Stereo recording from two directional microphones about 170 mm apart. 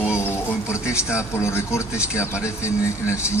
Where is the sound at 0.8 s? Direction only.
5° right (ahead or behind).